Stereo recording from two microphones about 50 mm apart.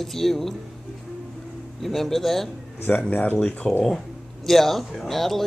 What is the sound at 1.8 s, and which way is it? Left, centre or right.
Speech, centre.